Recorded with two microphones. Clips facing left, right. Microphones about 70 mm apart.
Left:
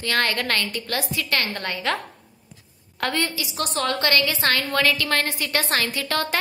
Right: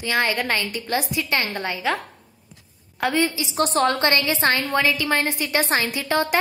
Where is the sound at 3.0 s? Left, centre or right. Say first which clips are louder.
Right 4 dB; centre.